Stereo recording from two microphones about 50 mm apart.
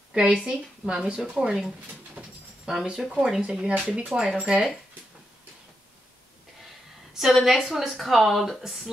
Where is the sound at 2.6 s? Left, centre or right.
Centre.